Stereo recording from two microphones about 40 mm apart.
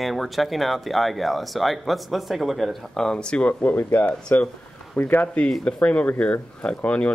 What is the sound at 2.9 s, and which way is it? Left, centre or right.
Speech, centre.